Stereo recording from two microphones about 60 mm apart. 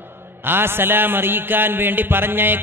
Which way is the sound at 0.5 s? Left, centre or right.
Right.